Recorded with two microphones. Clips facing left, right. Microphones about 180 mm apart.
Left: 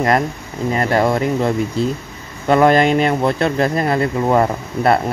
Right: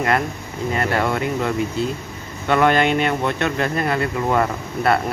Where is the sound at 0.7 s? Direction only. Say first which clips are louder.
Left 5 dB; 35° left (ahead or behind).